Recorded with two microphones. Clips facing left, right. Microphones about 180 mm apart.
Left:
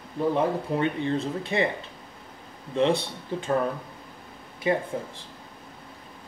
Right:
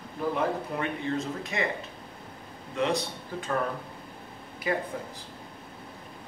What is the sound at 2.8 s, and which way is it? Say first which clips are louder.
Speech: left 5 dB; 30° left (ahead or behind).